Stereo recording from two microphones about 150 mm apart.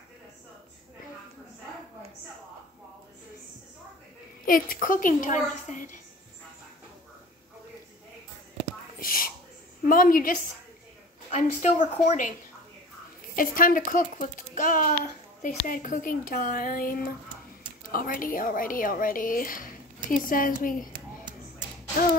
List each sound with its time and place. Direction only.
4.5 s a child's voice: 70° left (ahead or behind)
9.0 s a sound: 70° left (ahead or behind)
9.8 s speech: 65° left (ahead or behind)
11.2 s a woman's voice: 50° left (ahead or behind)
13.4 s a child's voice: 65° left (ahead or behind)
20.9 s a sound: 30° right (ahead or behind)